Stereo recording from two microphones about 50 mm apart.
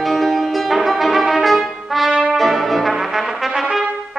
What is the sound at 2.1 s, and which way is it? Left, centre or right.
Brass instrument, centre.